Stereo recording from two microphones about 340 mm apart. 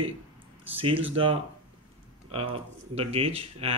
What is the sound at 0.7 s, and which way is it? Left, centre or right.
Speech, centre.